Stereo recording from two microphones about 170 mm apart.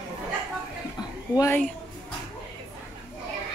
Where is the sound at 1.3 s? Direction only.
20° left (ahead or behind).